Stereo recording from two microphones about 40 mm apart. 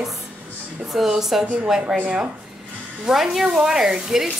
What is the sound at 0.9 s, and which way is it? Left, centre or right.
A woman's voice, centre.